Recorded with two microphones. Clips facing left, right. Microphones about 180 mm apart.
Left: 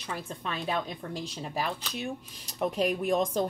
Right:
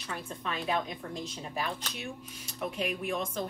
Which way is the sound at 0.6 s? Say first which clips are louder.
Even; 30° left (ahead or behind).